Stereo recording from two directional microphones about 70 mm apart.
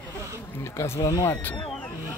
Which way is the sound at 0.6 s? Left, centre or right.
Left.